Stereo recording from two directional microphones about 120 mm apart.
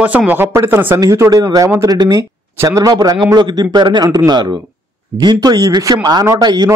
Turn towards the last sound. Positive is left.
turn(degrees=-35)  # may be behind; listen again after turning